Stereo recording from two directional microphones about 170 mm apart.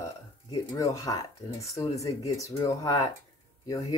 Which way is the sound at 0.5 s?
20° left (ahead or behind).